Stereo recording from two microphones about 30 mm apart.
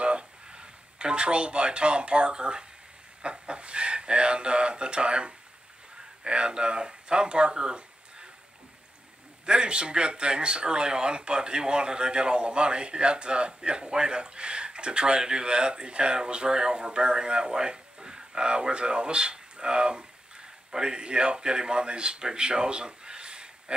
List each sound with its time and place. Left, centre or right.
0.0 s a sound: right
3.2 s speech: right
9.5 s speech: right